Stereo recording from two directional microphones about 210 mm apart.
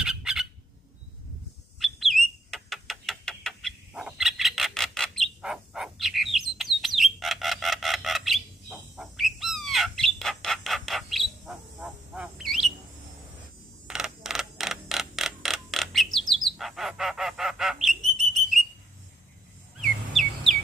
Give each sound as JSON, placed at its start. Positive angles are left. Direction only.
{"t": 0.0, "sound": "squawk", "side_deg": 0}
{"t": 1.8, "sound": "bird", "side_deg": 0}
{"t": 13.8, "sound": "mechanisms", "side_deg": 0}
{"t": 16.5, "sound": "bird", "side_deg": 0}
{"t": 20.2, "sound": "chirp", "side_deg": 0}